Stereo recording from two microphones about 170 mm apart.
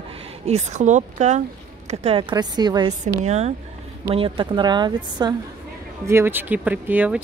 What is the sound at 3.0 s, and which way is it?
Speech, 40° right (ahead or behind).